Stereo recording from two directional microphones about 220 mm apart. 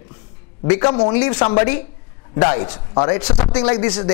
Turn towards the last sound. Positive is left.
turn(degrees=20)  # may be behind; listen again after turning